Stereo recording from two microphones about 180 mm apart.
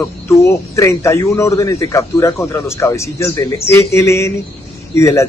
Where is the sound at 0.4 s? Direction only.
15° left (ahead or behind).